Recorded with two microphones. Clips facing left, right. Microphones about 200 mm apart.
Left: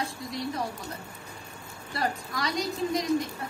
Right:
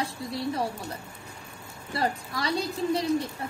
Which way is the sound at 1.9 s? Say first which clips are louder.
Right 2 dB; 30° right (ahead or behind).